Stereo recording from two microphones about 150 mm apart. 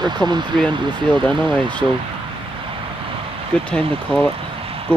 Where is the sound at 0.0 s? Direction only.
30° right (ahead or behind).